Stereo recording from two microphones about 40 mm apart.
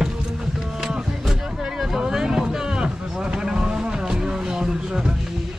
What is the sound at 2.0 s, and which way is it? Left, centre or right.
Vehicle, centre.